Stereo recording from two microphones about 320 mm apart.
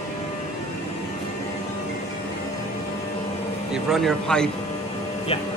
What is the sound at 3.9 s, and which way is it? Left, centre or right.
Speech, centre.